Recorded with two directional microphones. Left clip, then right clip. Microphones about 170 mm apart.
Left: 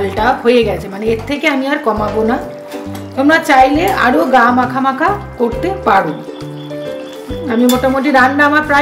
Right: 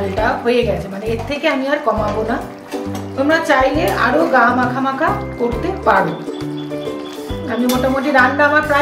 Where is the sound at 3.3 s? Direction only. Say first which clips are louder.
Left 5 dB; 70° left (ahead or behind).